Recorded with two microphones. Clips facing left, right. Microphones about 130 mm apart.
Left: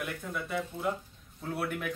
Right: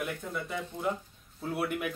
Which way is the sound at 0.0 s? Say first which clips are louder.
Right 1 dB; centre (ahead or behind).